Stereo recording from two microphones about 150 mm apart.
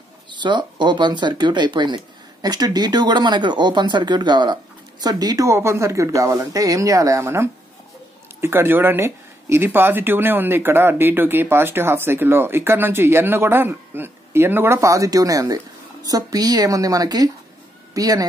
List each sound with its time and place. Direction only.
0.3 s speech: 30° right (ahead or behind)